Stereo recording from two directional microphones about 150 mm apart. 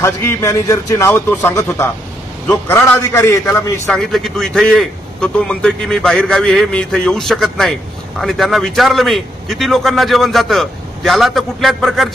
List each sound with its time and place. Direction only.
0.0 s a man's voice: 20° left (ahead or behind)
3.8 s a man's voice: 5° left (ahead or behind)